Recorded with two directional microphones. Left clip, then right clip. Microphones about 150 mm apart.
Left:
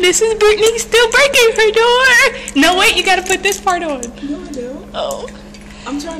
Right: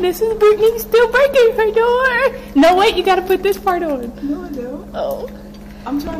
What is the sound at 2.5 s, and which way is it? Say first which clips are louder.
A woman's voice: right 3 dB; 25° right (ahead or behind).